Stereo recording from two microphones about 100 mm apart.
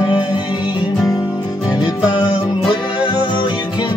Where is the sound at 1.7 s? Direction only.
45° left (ahead or behind).